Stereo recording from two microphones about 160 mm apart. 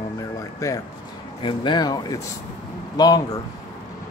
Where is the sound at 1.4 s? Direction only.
30° left (ahead or behind).